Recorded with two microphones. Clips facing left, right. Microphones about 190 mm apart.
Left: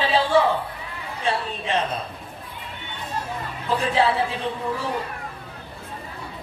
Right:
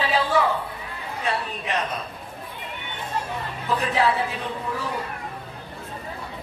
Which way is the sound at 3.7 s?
30° left (ahead or behind).